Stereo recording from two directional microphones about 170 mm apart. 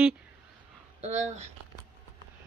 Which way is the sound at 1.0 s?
45° right (ahead or behind).